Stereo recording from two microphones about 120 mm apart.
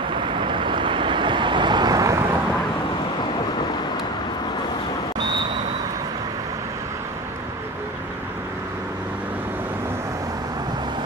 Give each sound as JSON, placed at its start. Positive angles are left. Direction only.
{"t": 0.4, "sound": "boat", "side_deg": -45}